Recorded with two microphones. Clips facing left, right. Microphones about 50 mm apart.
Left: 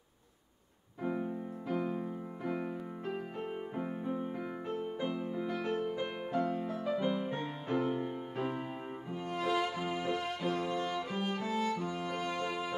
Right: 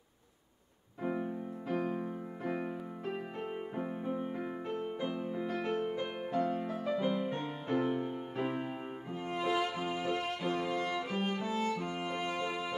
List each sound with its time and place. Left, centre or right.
1.0 s music: centre
1.7 s music: right
2.4 s music: centre
4.2 s music: centre
5.9 s music: centre
6.5 s music: centre
7.0 s music: centre
7.6 s music: right
7.9 s music: centre
10.8 s music: right